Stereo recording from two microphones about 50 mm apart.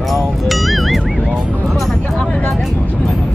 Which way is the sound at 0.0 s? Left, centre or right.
Centre.